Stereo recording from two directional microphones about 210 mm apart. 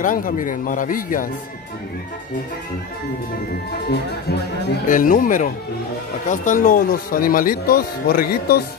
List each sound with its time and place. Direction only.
0.0 s speech: 40° left (ahead or behind)
4.8 s speech: 40° left (ahead or behind)